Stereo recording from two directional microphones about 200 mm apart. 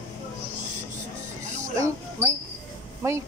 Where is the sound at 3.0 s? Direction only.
15° right (ahead or behind).